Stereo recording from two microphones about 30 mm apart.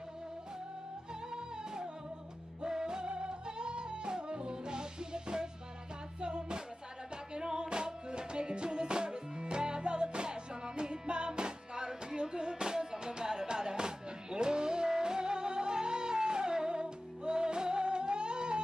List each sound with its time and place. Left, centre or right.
1.3 s music: right